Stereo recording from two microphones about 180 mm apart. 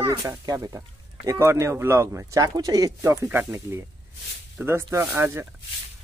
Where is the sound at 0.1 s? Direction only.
20° right (ahead or behind).